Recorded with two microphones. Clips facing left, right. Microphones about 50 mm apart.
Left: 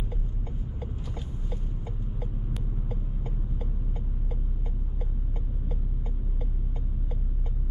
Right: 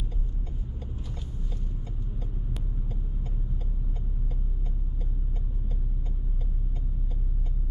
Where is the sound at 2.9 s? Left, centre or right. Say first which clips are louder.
Left 3 dB; centre.